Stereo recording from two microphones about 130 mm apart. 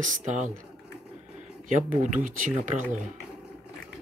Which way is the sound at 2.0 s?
80° right.